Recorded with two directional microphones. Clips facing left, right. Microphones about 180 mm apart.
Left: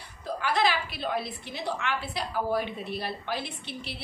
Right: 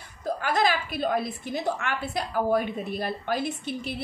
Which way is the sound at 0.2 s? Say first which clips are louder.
Right 2 dB; 45° right (ahead or behind).